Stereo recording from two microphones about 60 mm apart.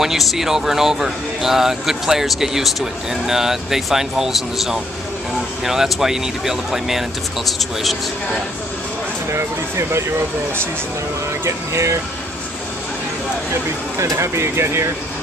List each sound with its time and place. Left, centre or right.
0.0 s speech: centre
9.3 s speech: right
11.4 s speech: right
13.9 s speech: right